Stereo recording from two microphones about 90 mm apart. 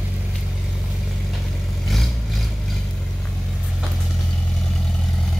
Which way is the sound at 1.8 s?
Centre (ahead or behind).